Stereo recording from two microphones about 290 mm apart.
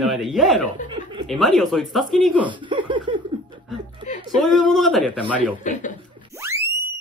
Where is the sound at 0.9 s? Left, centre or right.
Centre.